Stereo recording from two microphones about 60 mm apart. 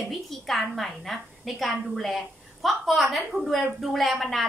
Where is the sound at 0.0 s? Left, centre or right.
Centre.